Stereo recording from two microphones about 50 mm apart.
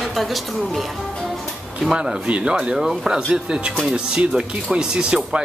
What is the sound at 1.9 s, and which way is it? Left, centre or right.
Speech, centre.